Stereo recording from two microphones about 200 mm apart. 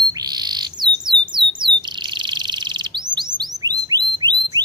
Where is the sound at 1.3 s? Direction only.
25° right (ahead or behind).